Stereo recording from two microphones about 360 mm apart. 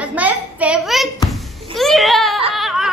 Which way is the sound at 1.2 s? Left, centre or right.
Centre.